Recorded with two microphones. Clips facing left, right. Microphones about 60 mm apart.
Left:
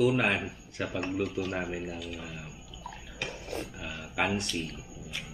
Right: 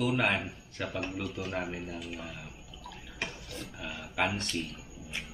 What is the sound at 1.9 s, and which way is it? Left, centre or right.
Speech, right.